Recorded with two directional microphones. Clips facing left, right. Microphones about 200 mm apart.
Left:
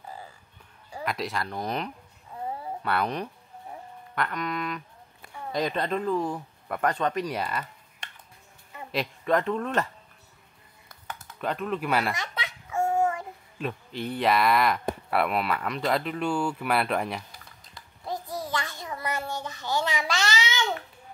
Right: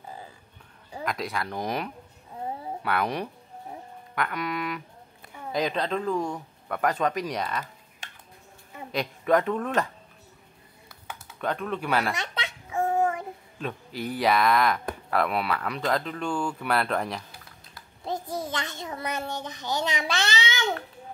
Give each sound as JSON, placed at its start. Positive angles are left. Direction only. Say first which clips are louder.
{"t": 1.0, "sound": "speech", "louder": "even", "side_deg": 0}
{"t": 1.6, "sound": "music", "louder": "right 1 dB", "side_deg": -10}
{"t": 5.5, "sound": "speech", "louder": "right 1 dB", "side_deg": 0}
{"t": 8.9, "sound": "speech", "louder": "right 2 dB", "side_deg": -5}
{"t": 11.3, "sound": "speech", "louder": "even", "side_deg": 5}
{"t": 12.2, "sound": "baby laughter", "louder": "right 1 dB", "side_deg": -25}
{"t": 13.9, "sound": "speech", "louder": "right 1 dB", "side_deg": -5}
{"t": 18.0, "sound": "a sound", "louder": "right 2 dB", "side_deg": -25}
{"t": 18.4, "sound": "child singing", "louder": "even", "side_deg": -20}